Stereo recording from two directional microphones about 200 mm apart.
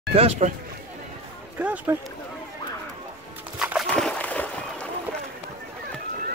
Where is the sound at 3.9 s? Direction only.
5° left (ahead or behind).